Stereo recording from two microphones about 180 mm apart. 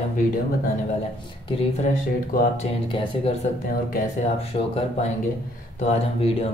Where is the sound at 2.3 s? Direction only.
35° left (ahead or behind).